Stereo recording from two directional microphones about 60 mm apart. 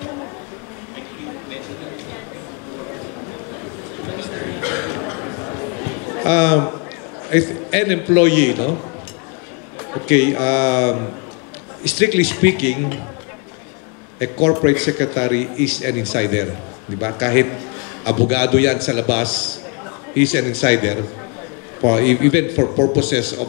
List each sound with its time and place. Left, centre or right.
4.1 s a sound: centre
6.2 s a man's voice: left
6.5 s a man's voice: centre
7.2 s a man's voice: centre
9.8 s a sound: centre
10.0 s speech: centre
12.0 s speech: centre
14.2 s a man's voice: centre